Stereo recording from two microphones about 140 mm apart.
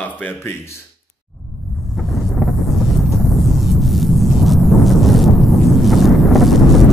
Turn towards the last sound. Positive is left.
turn(degrees=0)  # may be behind; listen again after turning